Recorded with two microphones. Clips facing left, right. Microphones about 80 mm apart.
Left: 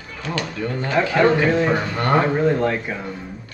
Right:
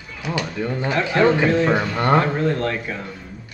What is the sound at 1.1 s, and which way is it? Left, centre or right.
Speech, centre.